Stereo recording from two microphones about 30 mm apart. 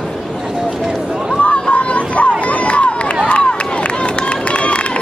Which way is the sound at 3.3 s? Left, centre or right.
Left.